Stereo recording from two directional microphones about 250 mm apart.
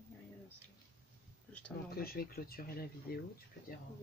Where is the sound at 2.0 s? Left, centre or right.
Left.